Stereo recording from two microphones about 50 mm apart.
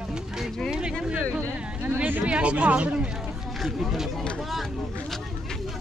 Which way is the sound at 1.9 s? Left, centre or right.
Right.